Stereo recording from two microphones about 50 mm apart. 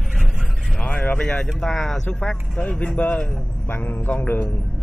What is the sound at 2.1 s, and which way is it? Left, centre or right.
Speech, left.